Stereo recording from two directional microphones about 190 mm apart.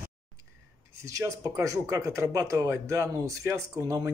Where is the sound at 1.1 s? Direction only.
15° right (ahead or behind).